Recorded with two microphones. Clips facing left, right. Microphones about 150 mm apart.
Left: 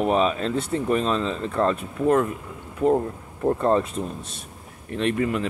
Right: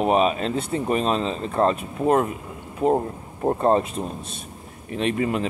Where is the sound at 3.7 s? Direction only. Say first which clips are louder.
Right 1 dB; 20° right (ahead or behind).